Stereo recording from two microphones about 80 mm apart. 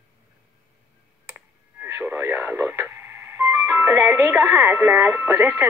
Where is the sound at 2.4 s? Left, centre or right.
Right.